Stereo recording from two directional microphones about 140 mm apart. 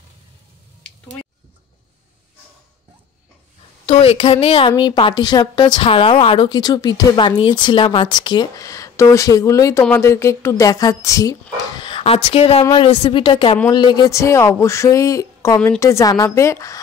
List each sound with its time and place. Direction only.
3.8 s a woman's voice: 45° left (ahead or behind); by 11.3 s 25° left (ahead or behind)
11.8 s a woman's voice: 40° left (ahead or behind); by 16.8 s 20° left (ahead or behind)